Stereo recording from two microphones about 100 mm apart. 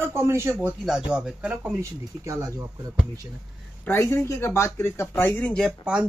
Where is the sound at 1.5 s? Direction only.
20° right (ahead or behind).